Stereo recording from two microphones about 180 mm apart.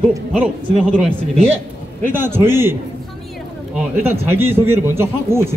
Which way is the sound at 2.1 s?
10° right (ahead or behind).